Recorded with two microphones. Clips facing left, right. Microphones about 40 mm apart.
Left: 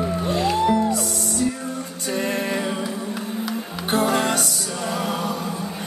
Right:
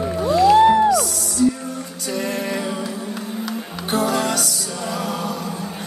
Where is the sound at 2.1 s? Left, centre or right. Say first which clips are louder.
Even; left.